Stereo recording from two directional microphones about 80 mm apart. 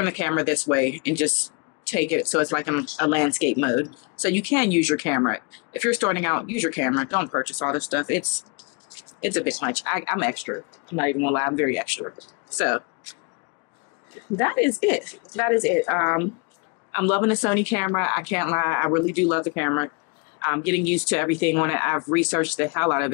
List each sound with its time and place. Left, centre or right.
0.0 s speech: centre
14.3 s speech: left